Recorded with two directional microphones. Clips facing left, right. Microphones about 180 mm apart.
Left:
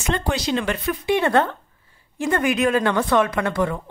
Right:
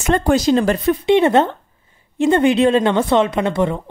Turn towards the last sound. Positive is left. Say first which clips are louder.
# right 4 dB
turn(degrees=-25)  # may be behind; listen again after turning